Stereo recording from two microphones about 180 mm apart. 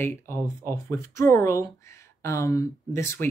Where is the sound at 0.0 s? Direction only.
15° left (ahead or behind).